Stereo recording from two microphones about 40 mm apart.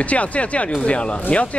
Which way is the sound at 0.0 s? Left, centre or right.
Left.